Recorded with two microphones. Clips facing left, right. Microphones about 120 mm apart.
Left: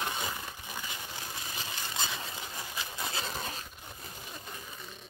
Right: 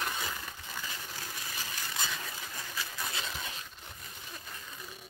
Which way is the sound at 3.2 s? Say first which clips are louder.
Left 3 dB; 40° left (ahead or behind).